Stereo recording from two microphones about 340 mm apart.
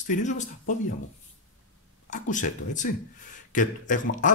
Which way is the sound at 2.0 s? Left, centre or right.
Left.